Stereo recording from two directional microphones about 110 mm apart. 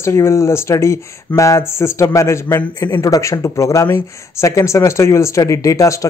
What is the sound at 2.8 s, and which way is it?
Speech, 35° left (ahead or behind).